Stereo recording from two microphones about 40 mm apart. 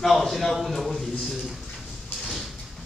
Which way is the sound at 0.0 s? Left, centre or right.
Centre.